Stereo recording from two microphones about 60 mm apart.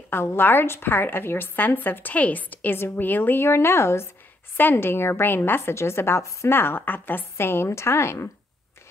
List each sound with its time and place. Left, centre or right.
0.1 s a woman's voice: left
4.6 s a woman's voice: left